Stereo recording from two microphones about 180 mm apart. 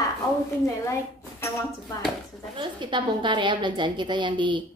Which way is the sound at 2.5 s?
25° right (ahead or behind).